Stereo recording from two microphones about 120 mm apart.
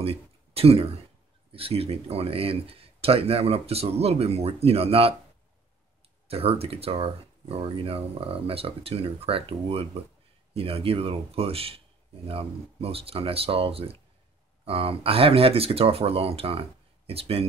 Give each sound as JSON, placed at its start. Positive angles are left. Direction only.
{"t": 0.0, "sound": "a sound", "side_deg": -55}
{"t": 1.5, "sound": "speech", "side_deg": -55}
{"t": 6.2, "sound": "speech", "side_deg": -55}